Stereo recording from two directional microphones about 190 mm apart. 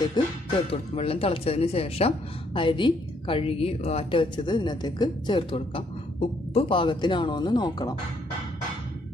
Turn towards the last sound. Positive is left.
turn(degrees=25)  # may be behind; listen again after turning